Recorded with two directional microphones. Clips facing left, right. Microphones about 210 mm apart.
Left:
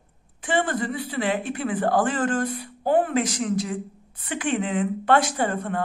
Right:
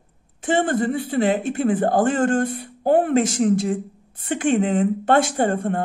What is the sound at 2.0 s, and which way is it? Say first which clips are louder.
Speech: right 5 dB; 45° right (ahead or behind).